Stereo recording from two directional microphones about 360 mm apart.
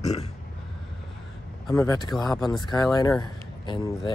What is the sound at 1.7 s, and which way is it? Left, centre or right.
Speech, centre.